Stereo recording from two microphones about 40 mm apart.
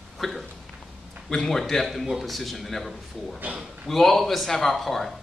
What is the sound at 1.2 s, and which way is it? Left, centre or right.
A man's voice, centre.